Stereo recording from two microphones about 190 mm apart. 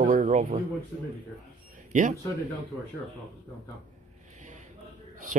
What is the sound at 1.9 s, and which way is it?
Speech, 40° right (ahead or behind).